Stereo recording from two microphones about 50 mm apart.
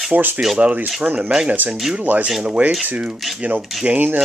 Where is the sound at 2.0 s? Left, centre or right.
Right.